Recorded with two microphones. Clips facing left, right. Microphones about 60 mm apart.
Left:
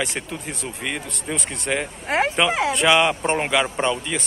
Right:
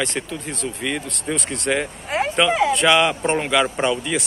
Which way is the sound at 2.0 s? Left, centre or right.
Left.